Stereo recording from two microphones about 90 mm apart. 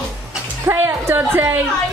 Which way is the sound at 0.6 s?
25° right (ahead or behind).